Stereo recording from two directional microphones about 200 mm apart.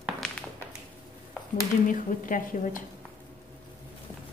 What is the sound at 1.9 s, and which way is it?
Speech, 40° left (ahead or behind).